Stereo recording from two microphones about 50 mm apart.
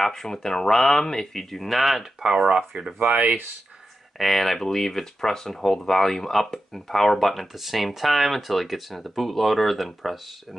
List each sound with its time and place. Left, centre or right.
0.0 s speech: centre
2.2 s speech: centre
3.1 s speech: right
4.2 s speech: centre